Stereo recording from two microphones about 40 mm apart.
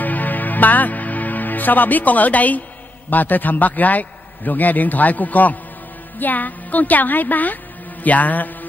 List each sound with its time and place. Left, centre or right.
0.0 s music: left
3.1 s a man's voice: left